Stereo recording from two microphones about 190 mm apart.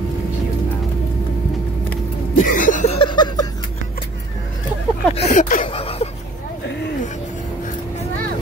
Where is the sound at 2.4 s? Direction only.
45° left (ahead or behind); by 3.5 s 20° left (ahead or behind).